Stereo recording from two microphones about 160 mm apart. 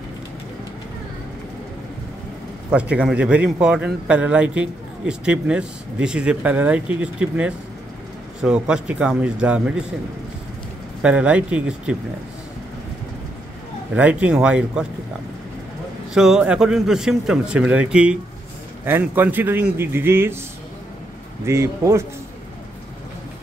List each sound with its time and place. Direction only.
2.7 s a man's voice: 5° right (ahead or behind)
11.0 s a man's voice: 5° right (ahead or behind)
13.9 s a man's voice: 10° right (ahead or behind)
16.1 s a man's voice: 5° right (ahead or behind)
21.5 s a man's voice: 15° right (ahead or behind)